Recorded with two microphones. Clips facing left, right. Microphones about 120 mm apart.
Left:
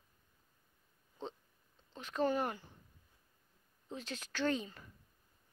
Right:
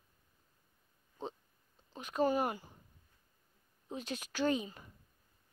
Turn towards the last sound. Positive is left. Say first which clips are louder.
# right 2 dB
turn(degrees=-15)  # may be behind; listen again after turning